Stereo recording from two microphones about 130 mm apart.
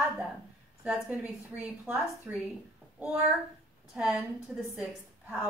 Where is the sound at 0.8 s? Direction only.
5° right (ahead or behind).